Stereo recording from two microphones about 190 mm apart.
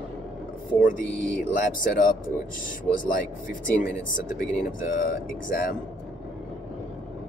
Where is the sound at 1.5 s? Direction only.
45° left (ahead or behind).